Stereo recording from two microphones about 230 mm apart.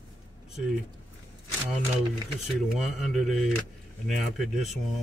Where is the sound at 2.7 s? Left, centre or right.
Centre.